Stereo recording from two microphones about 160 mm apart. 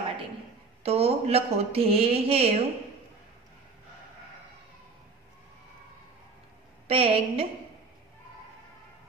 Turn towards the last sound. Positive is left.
turn(degrees=-35)  # may be behind; listen again after turning